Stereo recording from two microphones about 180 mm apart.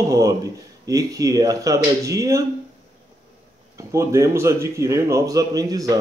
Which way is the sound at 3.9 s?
15° right (ahead or behind).